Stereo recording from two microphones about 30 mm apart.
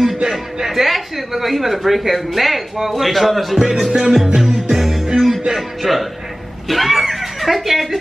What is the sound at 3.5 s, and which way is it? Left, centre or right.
Music, centre.